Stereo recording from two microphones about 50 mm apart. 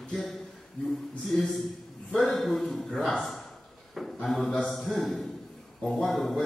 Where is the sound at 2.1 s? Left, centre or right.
Centre.